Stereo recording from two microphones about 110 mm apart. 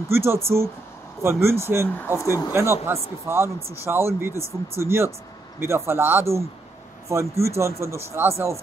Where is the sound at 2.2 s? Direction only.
30° left (ahead or behind).